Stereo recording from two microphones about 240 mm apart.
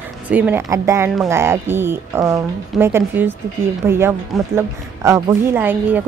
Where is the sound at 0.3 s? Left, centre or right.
Centre.